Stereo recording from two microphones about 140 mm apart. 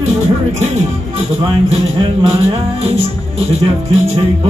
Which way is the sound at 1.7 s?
45° right (ahead or behind).